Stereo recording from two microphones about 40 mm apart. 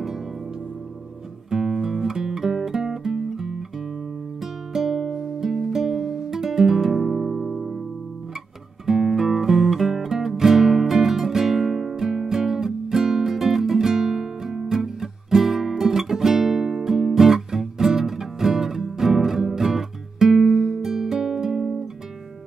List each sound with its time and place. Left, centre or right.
1.5 s music: centre
4.7 s music: centre
8.8 s music: centre